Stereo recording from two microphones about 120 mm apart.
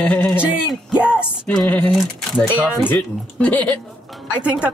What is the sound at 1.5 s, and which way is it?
Speech, 10° left (ahead or behind).